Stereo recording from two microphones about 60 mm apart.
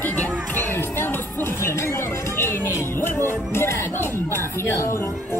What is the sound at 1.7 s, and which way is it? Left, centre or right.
Music, left.